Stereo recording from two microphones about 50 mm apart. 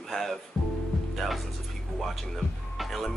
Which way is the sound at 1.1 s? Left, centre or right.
Centre.